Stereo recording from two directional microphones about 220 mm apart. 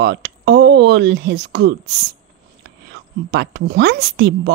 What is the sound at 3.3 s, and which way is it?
Speech, 50° right (ahead or behind).